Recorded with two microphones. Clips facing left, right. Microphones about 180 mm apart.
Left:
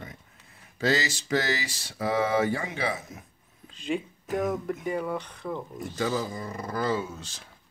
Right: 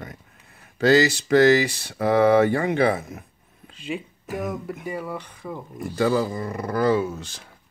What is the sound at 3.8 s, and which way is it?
Speech, 5° right (ahead or behind).